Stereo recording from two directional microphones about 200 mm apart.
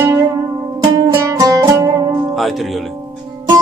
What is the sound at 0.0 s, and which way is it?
Music, 15° right (ahead or behind).